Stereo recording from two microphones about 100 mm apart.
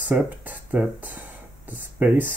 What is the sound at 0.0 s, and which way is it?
Speech, 15° right (ahead or behind).